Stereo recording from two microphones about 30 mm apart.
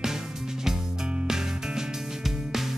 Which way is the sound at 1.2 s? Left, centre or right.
Centre.